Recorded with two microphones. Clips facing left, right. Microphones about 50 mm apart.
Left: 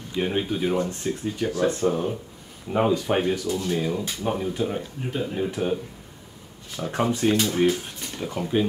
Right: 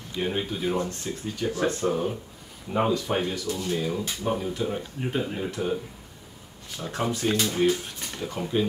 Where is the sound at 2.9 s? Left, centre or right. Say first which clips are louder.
Left 4 dB; left.